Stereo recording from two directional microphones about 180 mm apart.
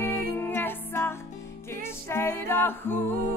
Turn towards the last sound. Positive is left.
turn(degrees=10)  # may be behind; listen again after turning